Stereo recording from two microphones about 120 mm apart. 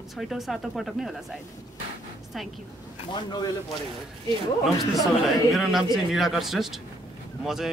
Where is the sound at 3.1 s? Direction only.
35° left (ahead or behind).